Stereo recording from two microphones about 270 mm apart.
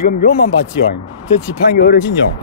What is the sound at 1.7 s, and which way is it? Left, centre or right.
Speech, left.